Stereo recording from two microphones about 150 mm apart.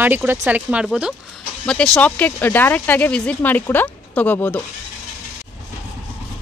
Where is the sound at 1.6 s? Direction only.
5° left (ahead or behind).